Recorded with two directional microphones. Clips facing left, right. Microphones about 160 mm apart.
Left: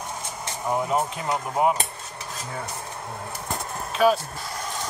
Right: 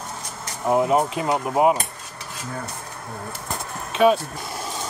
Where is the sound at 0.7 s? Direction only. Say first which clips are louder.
Right 6 dB; 20° right (ahead or behind).